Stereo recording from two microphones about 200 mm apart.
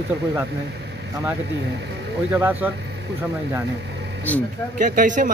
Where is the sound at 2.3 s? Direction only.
10° right (ahead or behind).